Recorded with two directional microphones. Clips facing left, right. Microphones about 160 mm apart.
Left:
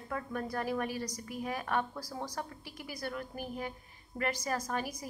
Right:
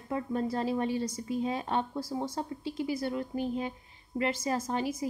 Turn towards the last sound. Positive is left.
turn(degrees=-25)  # may be behind; listen again after turning